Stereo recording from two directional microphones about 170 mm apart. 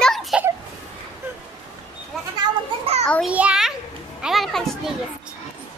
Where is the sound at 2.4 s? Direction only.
35° right (ahead or behind).